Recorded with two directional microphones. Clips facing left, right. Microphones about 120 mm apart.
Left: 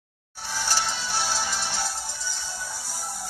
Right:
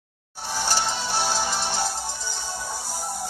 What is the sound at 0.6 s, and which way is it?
Music, 20° right (ahead or behind).